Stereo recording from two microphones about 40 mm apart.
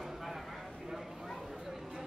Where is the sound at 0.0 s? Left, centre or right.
Centre.